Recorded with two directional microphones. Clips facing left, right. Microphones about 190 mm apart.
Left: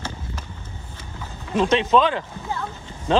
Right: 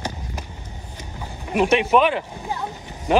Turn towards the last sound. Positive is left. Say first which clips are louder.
# right 1 dB
turn(degrees=-15)  # may be behind; listen again after turning